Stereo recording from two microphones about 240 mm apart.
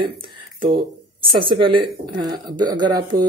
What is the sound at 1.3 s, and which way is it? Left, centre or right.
Speech, right.